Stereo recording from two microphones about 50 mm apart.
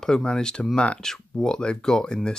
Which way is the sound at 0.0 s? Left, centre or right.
Centre.